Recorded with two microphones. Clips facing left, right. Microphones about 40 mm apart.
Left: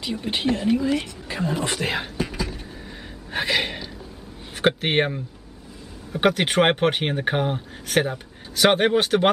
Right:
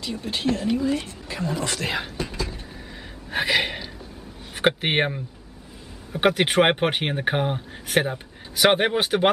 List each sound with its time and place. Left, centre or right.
0.0 s speech: left
3.3 s a sound: centre
4.6 s speech: centre